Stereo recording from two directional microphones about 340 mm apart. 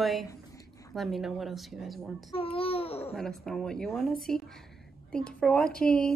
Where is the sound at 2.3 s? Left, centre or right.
Centre.